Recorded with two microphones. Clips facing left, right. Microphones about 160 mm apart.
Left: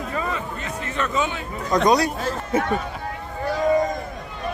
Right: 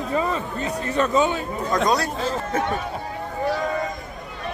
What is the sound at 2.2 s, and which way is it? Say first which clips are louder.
Speech: left 1 dB; 5° left (ahead or behind).